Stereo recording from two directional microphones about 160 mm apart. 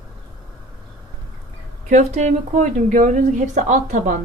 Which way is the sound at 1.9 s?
45° right (ahead or behind).